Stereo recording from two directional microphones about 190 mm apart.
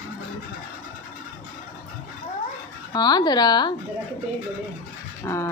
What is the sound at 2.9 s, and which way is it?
Speech, 20° left (ahead or behind).